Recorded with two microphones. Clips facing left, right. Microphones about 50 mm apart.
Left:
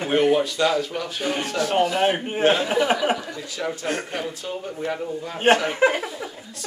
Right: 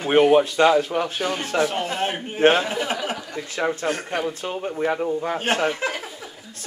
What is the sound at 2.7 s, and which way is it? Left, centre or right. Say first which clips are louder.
Speech: left 5 dB; centre.